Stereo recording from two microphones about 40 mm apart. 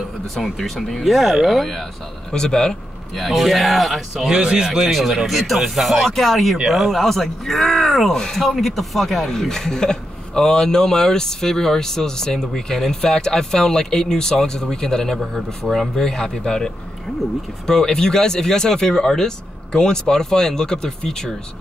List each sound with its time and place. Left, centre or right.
0.4 s speech: centre
2.3 s speech: centre
3.2 s speech: centre
4.1 s speech: centre
4.9 s speech: centre